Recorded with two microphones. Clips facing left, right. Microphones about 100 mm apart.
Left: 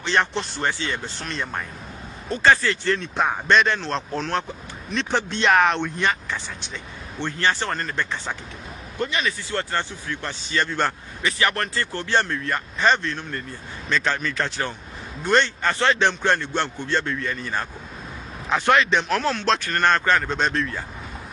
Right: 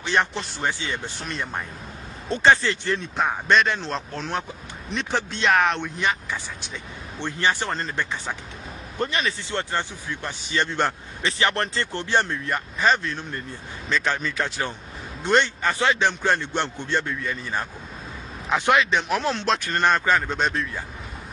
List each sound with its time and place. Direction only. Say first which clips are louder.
0.0 s speech: left 1 dB; 10° right (ahead or behind)
2.2 s speech: even; 25° right (ahead or behind)
3.2 s speech: left 1 dB; centre (ahead or behind)
7.2 s speech: left 1 dB; 15° right (ahead or behind)
9.0 s speech: even; 35° right (ahead or behind)
9.5 s speech: left 1 dB; 20° right (ahead or behind)
12.8 s speech: left 1 dB; 5° right (ahead or behind)
13.1 s speech: left 1 dB; 15° right (ahead or behind)
16.3 s speech: left 1 dB; 20° right (ahead or behind); by 19.0 s 5° right (ahead or behind)
19.0 s speech: left 1 dB; 15° right (ahead or behind)